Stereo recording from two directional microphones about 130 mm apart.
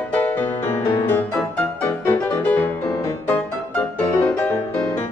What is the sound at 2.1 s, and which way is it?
Music, 15° left (ahead or behind).